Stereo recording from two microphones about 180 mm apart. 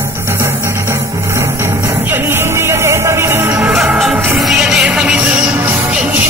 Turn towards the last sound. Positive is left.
turn(degrees=-5)  # may be behind; listen again after turning